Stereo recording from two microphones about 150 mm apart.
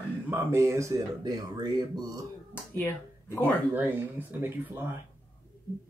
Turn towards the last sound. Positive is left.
turn(degrees=-15)  # may be behind; listen again after turning